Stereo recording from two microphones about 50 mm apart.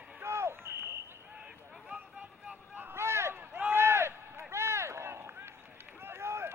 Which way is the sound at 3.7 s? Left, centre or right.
Right.